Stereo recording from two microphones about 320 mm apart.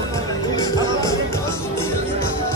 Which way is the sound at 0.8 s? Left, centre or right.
Centre.